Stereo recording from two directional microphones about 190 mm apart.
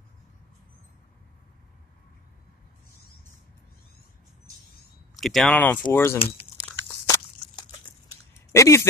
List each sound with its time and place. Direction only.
5.2 s speech: centre (ahead or behind)
6.6 s biting: 20° left (ahead or behind)
8.5 s a sound: 15° left (ahead or behind)